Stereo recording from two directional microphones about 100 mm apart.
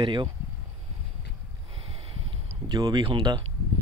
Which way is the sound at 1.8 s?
75° right (ahead or behind).